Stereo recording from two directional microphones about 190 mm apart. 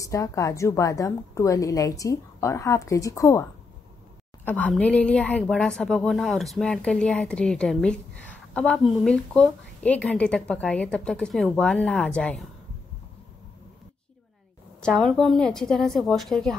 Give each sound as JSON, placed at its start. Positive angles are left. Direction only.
{"t": 0.0, "sound": "a woman's voice", "side_deg": 15}
{"t": 4.5, "sound": "speech", "side_deg": 10}
{"t": 14.8, "sound": "speech", "side_deg": 0}